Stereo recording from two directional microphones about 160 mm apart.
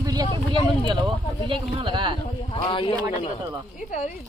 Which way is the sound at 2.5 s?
35° left (ahead or behind).